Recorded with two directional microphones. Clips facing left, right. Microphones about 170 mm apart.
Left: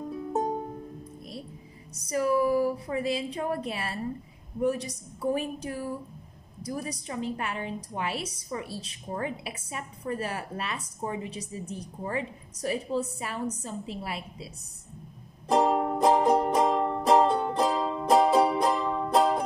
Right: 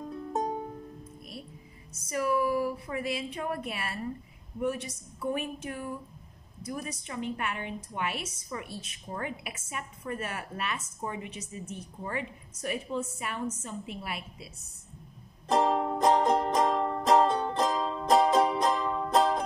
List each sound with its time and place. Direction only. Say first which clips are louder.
0.1 s music: left 3 dB; 5° left (ahead or behind)
2.0 s a woman's voice: left 3 dB; 30° left (ahead or behind)
15.4 s music: left 2 dB; 10° left (ahead or behind)